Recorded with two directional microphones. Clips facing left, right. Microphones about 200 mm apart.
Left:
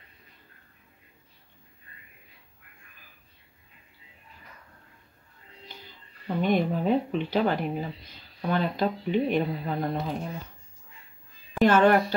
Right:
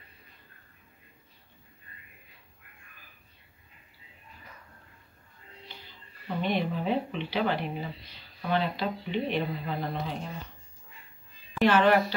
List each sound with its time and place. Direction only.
6.4 s speech: 45° left (ahead or behind)
11.5 s a woman's voice: 45° left (ahead or behind)